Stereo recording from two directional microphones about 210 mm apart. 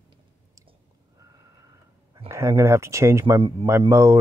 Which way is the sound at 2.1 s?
15° right (ahead or behind).